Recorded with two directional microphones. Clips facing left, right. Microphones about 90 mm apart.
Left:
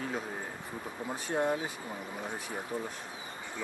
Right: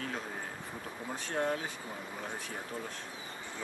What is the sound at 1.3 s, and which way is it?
Speech, 15° left (ahead or behind).